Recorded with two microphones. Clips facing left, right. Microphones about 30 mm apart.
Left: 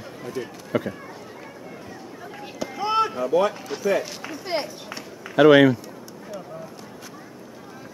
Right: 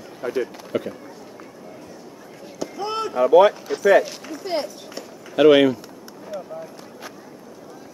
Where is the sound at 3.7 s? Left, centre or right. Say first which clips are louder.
Right 5 dB; centre.